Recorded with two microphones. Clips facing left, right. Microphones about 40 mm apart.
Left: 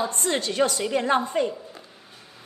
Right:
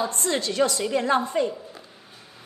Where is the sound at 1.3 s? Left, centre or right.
Left.